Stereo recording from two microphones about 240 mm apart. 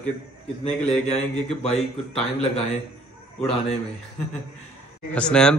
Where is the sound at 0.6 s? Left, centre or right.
Left.